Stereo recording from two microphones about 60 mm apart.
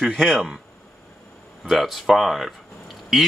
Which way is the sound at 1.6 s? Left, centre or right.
Centre.